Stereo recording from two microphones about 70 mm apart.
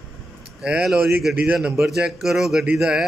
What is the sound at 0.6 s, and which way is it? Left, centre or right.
A man's voice, centre.